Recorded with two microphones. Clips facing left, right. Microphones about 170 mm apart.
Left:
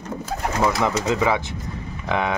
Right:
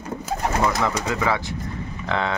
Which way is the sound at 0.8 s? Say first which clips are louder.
Left 3 dB; 20° left (ahead or behind).